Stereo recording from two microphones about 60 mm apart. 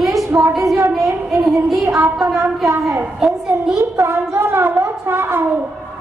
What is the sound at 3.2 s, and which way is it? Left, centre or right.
Speech, centre.